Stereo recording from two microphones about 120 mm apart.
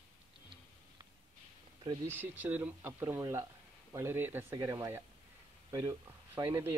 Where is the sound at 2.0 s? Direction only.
15° right (ahead or behind).